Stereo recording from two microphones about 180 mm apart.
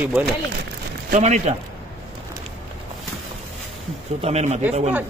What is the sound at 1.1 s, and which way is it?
Speech, 40° right (ahead or behind).